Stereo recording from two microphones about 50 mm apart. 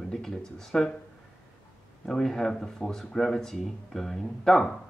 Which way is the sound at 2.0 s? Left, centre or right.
Centre.